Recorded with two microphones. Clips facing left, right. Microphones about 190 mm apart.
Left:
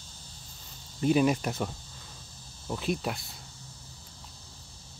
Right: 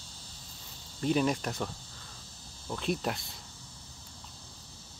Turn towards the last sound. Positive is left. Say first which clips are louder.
# left 1 dB
turn(degrees=0)  # may be behind; listen again after turning